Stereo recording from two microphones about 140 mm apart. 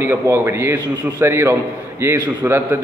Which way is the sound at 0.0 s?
20° right (ahead or behind).